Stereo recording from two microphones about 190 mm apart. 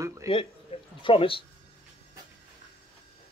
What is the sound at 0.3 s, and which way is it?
Speech, 30° left (ahead or behind).